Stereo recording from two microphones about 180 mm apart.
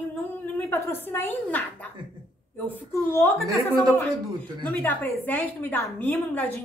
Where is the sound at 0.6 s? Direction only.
10° left (ahead or behind).